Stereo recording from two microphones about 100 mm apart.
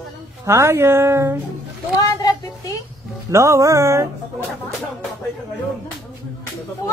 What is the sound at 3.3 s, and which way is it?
Music, 30° right (ahead or behind).